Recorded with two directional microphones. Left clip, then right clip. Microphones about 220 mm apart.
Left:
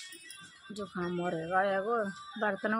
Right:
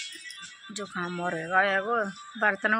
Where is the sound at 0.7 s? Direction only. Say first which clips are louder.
Right 3 dB; 5° right (ahead or behind).